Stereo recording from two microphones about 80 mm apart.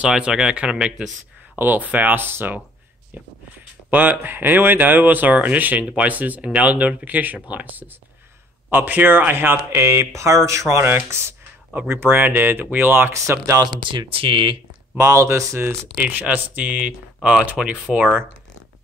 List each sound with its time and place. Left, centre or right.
0.0 s speech: centre
1.6 s speech: right
3.9 s speech: right
13.1 s speech: right
13.7 s speech: right
15.0 s speech: right
16.0 s speech: centre